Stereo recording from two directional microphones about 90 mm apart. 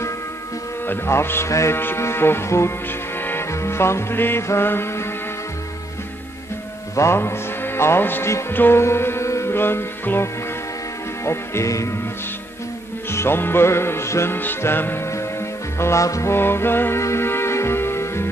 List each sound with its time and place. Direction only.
0.8 s music: 25° left (ahead or behind)
7.0 s music: 30° left (ahead or behind)
11.2 s speech: 35° left (ahead or behind)
13.1 s music: 25° left (ahead or behind)